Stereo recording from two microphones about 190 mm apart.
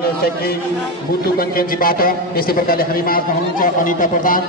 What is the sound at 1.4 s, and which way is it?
A man's voice, 50° left (ahead or behind).